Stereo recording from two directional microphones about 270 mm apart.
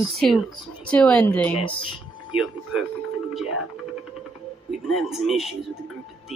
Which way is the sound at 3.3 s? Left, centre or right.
Centre.